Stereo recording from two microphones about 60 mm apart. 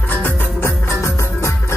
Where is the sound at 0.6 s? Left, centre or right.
Left.